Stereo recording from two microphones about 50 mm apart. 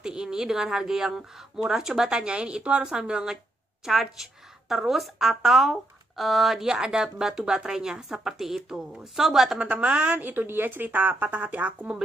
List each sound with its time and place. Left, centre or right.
0.0 s a woman's voice: centre
9.6 s speech: right